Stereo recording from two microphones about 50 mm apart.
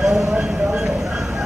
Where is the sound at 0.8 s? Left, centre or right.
Centre.